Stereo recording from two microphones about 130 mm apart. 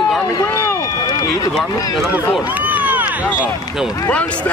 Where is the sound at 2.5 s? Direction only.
15° right (ahead or behind).